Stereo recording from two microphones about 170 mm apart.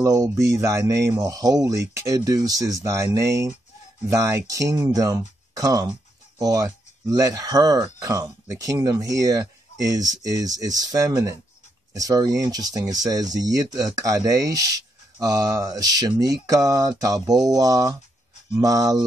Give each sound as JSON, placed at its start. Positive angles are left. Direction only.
{"t": 0.0, "sound": "speech", "side_deg": -20}